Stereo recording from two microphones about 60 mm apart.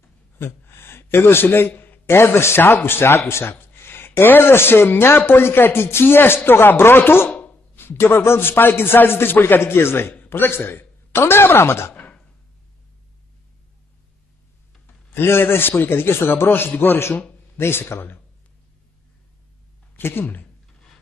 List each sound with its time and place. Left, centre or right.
0.4 s a man's voice: left
7.2 s a sound: left
7.7 s a man's voice: left
11.9 s a sound: left
15.1 s a man's voice: left
17.1 s a man's voice: left
17.6 s a man's voice: left
20.0 s a man's voice: left